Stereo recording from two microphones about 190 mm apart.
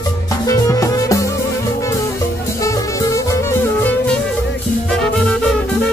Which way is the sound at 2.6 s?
15° left (ahead or behind).